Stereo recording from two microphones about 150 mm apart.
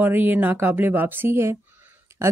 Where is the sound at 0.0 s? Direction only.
15° right (ahead or behind).